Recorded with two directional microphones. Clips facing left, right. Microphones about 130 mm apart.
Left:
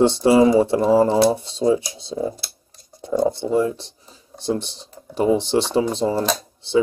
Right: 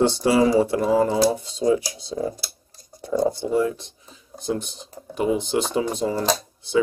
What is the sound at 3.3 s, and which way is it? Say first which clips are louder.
Speech: left 2 dB; 25° left (ahead or behind).